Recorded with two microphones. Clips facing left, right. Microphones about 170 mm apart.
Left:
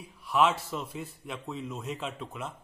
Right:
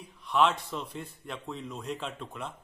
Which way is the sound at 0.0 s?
5° left (ahead or behind).